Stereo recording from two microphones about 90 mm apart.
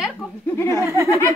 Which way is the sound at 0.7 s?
35° right (ahead or behind).